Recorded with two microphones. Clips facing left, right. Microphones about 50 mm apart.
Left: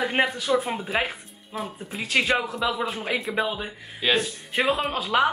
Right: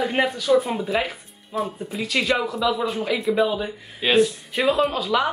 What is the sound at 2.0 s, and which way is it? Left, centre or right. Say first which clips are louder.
Speech: right 1 dB; left.